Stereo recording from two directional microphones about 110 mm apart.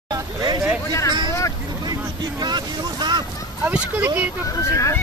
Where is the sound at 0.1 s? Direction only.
35° right (ahead or behind).